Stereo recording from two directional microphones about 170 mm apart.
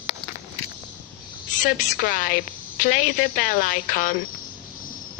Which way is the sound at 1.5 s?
50° left (ahead or behind).